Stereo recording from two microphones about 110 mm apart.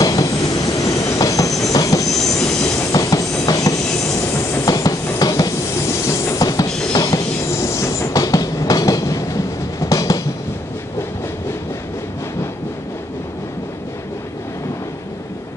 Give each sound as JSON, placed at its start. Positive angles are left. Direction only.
{"t": 0.0, "sound": "train", "side_deg": 35}
{"t": 2.1, "sound": "train", "side_deg": 5}
{"t": 2.8, "sound": "train", "side_deg": 35}